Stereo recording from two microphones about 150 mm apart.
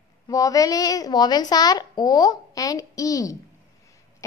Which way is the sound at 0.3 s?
25° left (ahead or behind).